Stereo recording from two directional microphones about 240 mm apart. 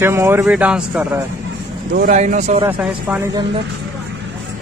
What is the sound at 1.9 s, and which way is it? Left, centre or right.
Speech, right.